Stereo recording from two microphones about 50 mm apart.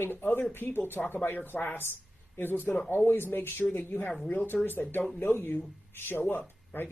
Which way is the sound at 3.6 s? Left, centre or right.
Left.